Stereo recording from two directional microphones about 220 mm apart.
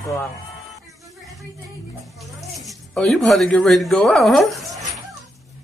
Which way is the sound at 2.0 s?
Centre (ahead or behind).